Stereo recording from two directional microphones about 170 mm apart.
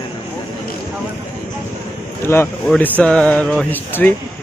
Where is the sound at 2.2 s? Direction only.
15° left (ahead or behind).